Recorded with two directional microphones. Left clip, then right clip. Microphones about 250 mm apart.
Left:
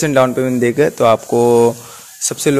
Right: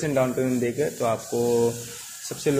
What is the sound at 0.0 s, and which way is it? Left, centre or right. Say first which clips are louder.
A man's voice: left 10 dB; left.